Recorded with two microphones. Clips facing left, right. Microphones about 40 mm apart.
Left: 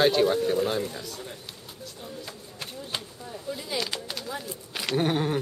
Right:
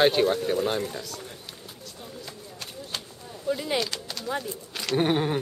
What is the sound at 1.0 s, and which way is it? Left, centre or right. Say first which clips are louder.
Speech: left 1 dB; centre.